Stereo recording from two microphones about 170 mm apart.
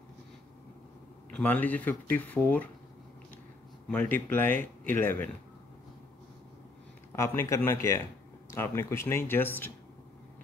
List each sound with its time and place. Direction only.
1.3 s speech: 10° left (ahead or behind)
3.9 s speech: 10° left (ahead or behind)
7.1 s speech: 15° left (ahead or behind)